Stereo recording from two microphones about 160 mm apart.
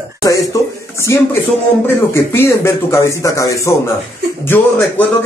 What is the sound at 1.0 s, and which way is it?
Speech, 15° left (ahead or behind).